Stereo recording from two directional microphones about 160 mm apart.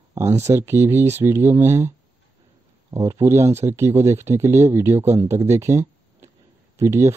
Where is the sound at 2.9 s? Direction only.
15° right (ahead or behind).